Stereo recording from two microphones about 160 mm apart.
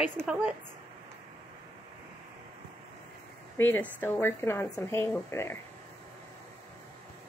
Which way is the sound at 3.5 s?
15° left (ahead or behind).